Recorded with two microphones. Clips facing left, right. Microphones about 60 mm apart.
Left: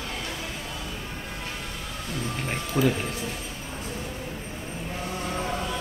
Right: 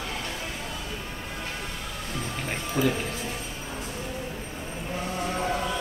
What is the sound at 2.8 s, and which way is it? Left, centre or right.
Music, centre.